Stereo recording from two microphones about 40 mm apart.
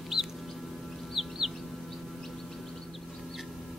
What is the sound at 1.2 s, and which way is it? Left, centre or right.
Music, centre.